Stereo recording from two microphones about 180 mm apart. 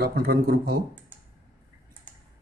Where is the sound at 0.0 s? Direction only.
60° right (ahead or behind).